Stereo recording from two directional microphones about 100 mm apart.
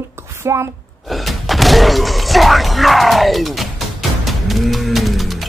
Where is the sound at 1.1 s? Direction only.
Centre (ahead or behind).